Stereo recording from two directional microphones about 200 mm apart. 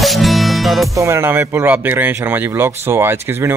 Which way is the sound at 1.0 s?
15° right (ahead or behind).